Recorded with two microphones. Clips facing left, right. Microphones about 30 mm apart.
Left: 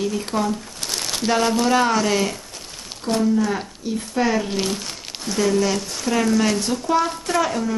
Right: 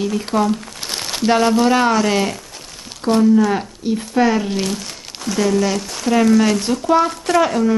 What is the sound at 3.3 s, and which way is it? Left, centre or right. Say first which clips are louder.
Speech: right 6 dB; centre.